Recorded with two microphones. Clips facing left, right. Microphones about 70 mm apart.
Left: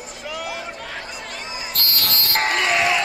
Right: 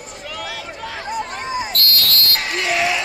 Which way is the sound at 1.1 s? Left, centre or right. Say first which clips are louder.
Right 8 dB; right.